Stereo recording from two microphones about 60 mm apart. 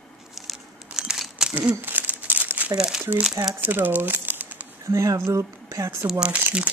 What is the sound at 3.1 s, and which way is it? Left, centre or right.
Speech, right.